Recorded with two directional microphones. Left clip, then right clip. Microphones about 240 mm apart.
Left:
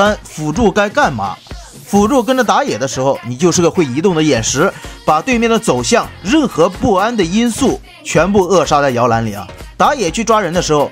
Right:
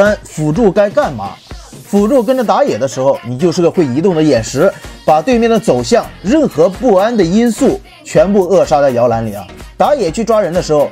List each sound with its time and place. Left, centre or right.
0.0 s speech: centre